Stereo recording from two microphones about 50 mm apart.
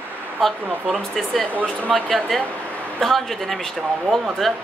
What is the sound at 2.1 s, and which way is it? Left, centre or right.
Speech, centre.